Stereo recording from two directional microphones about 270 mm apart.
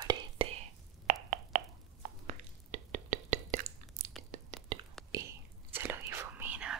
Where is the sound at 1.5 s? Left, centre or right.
Right.